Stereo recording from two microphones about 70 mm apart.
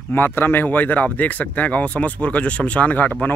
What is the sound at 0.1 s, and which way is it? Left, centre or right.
Speech, left.